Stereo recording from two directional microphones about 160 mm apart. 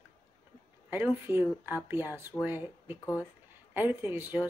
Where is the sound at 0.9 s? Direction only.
15° right (ahead or behind).